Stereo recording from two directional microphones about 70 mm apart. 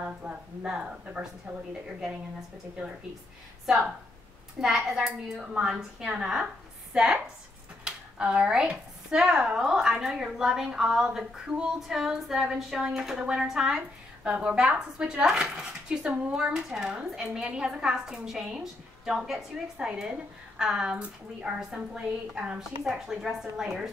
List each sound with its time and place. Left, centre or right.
0.2 s speech: centre
4.6 s a woman's voice: centre